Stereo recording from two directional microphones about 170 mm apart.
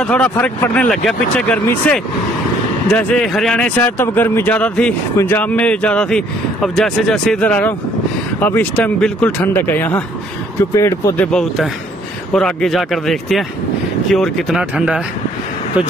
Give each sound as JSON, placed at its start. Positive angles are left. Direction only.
{"t": 0.0, "sound": "speech", "side_deg": 10}
{"t": 11.3, "sound": "speech", "side_deg": 0}